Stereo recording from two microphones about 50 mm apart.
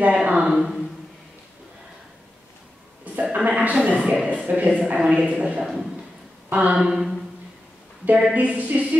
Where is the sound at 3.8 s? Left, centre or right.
Right.